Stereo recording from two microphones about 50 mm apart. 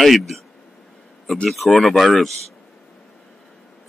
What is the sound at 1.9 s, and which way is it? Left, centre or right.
Speech, centre.